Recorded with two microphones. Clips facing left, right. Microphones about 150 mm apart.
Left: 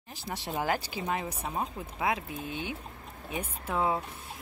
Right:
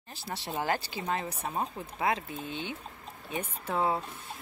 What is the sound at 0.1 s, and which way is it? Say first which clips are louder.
Speech: left 1 dB; 15° left (ahead or behind).